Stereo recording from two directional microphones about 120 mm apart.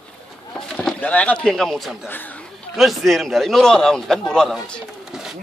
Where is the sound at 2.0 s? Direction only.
15° left (ahead or behind).